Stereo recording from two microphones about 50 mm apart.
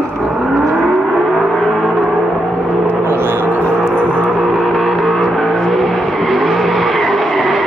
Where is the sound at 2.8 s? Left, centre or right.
Right.